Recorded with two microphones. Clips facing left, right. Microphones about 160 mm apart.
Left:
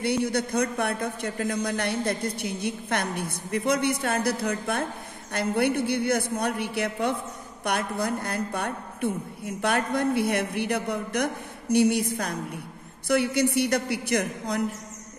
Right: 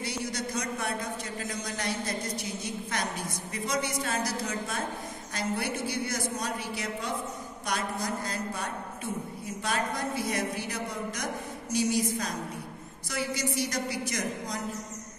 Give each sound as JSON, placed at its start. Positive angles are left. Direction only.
{"t": 0.0, "sound": "a man's voice", "side_deg": 60}